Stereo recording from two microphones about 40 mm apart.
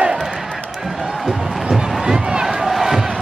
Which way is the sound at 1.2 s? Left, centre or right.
Centre.